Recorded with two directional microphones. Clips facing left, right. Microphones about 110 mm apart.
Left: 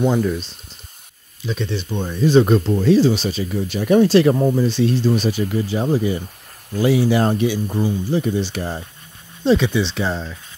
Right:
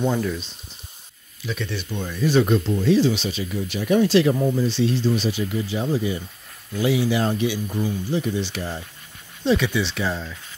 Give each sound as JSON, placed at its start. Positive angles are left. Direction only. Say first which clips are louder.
{"t": 1.4, "sound": "speech", "louder": "left 4 dB", "side_deg": 30}
{"t": 2.4, "sound": "speech", "louder": "left 4 dB", "side_deg": 45}
{"t": 9.6, "sound": "speech", "louder": "left 4 dB", "side_deg": 25}